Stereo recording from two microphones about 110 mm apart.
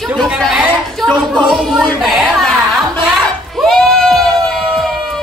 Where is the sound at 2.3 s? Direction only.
Centre (ahead or behind).